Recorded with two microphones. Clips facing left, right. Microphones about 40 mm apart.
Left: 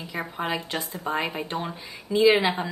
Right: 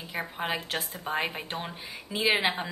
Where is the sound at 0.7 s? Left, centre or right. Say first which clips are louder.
Left 3 dB; centre.